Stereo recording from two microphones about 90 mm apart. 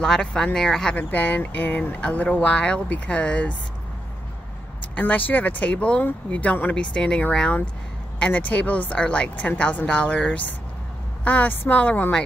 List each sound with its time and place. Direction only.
0.0 s speech: 10° left (ahead or behind)
4.9 s speech: 20° left (ahead or behind)